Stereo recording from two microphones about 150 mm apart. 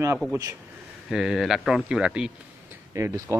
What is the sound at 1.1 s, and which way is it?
Speech, 5° right (ahead or behind).